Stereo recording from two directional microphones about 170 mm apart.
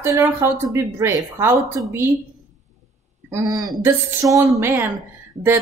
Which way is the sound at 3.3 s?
20° right (ahead or behind).